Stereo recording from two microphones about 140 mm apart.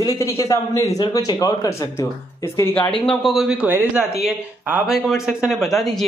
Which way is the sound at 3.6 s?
15° right (ahead or behind).